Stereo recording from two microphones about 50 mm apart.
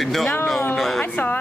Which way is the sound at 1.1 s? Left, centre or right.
Left.